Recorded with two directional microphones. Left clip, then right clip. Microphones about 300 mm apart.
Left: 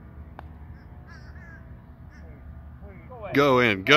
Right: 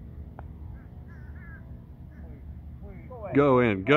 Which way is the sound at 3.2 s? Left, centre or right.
Centre.